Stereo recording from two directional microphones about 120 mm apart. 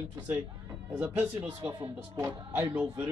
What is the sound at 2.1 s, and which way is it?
Speech, 20° right (ahead or behind).